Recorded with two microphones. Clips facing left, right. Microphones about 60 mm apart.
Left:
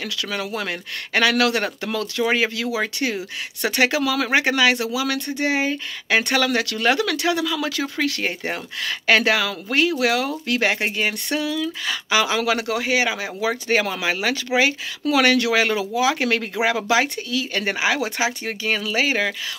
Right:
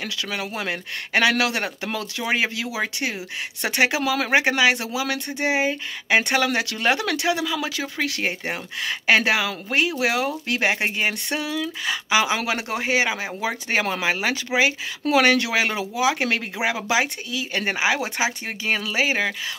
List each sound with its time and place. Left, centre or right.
0.0 s speech: right